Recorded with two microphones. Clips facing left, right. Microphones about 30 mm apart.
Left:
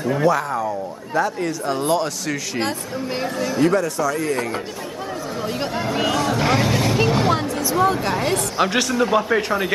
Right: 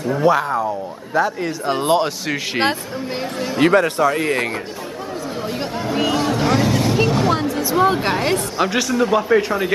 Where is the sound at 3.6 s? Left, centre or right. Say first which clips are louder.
Right 5 dB; right.